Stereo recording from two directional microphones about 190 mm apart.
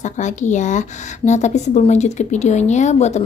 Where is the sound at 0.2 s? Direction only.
40° left (ahead or behind).